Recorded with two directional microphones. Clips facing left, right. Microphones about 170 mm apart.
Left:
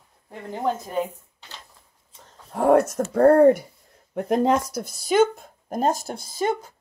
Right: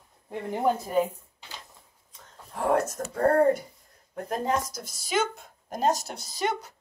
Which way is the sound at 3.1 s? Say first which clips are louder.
Left 7 dB; 70° left (ahead or behind).